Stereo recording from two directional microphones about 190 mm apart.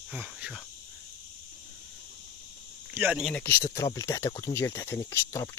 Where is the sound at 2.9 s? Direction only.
5° right (ahead or behind).